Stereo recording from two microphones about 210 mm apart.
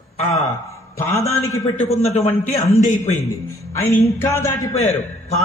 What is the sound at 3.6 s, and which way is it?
Music, 10° left (ahead or behind).